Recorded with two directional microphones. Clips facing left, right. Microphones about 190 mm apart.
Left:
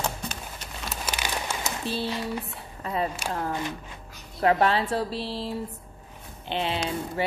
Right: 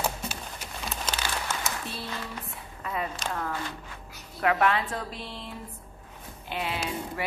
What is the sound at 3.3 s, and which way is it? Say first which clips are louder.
Speech: left 3 dB; 30° left (ahead or behind).